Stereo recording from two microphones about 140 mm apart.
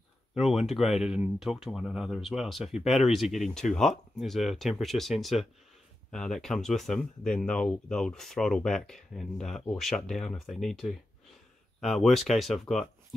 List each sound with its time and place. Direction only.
0.3 s speech: 5° right (ahead or behind)